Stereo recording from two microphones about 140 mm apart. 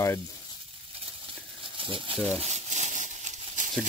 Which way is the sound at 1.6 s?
40° right (ahead or behind).